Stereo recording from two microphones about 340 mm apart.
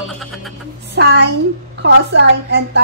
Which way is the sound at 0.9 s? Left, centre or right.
Right.